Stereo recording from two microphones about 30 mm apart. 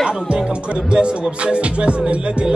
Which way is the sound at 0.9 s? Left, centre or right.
Right.